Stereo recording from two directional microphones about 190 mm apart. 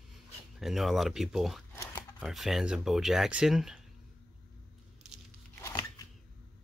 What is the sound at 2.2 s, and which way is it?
Speech, centre (ahead or behind).